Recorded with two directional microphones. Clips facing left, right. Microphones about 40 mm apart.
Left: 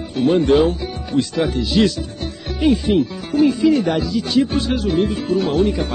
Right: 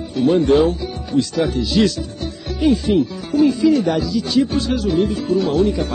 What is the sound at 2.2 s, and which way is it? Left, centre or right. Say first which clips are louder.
Music: even; left.